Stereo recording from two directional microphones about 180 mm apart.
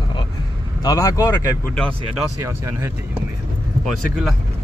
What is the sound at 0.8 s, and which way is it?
Speech, 20° left (ahead or behind).